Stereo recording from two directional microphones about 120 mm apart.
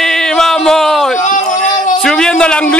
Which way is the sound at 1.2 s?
90° left.